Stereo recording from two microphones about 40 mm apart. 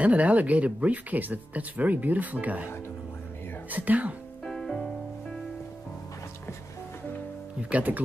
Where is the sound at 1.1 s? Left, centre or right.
Right.